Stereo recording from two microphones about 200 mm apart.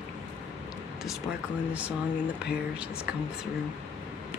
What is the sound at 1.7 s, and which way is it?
Speech, 5° right (ahead or behind).